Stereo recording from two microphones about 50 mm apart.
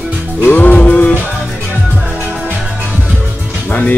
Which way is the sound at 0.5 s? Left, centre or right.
Left.